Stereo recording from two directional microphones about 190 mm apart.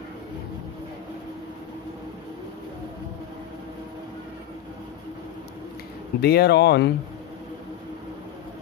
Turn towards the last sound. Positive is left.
turn(degrees=60)  # may be behind; listen again after turning